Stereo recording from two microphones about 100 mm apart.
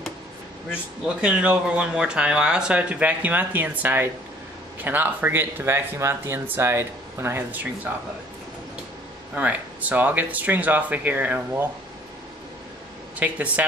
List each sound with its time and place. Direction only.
0.7 s speech: 10° right (ahead or behind)
9.3 s speech: 15° right (ahead or behind)
13.2 s speech: 15° right (ahead or behind)